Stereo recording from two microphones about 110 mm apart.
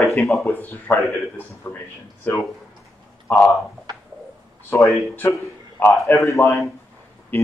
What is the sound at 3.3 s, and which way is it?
Speech, 10° left (ahead or behind).